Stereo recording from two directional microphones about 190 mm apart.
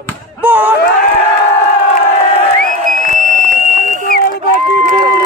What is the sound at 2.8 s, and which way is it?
Music, 45° right (ahead or behind).